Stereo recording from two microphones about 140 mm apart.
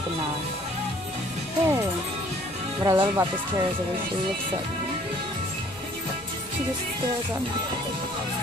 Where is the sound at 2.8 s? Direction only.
15° right (ahead or behind).